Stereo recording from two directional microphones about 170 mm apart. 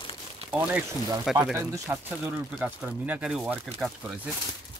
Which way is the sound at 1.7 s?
20° right (ahead or behind).